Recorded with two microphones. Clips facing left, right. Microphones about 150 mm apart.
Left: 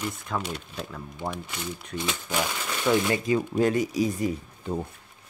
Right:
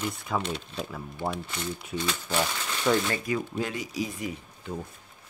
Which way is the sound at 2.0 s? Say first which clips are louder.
Left 1 dB; 15° left (ahead or behind).